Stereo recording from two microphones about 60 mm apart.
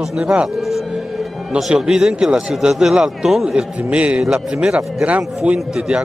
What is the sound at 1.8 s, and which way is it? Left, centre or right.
A man's voice, centre.